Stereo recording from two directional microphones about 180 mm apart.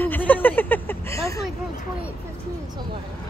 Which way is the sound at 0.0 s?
10° left (ahead or behind).